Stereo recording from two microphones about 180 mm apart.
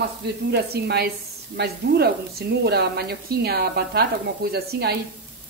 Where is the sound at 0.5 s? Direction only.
65° right (ahead or behind).